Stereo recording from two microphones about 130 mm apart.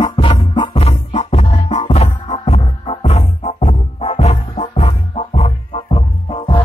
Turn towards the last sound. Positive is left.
turn(degrees=45)  # may be behind; listen again after turning